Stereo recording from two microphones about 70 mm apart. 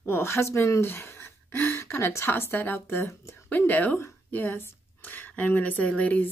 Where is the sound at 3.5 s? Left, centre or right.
Left.